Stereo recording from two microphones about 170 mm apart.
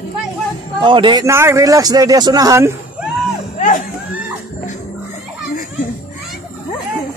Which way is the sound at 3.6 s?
45° left (ahead or behind).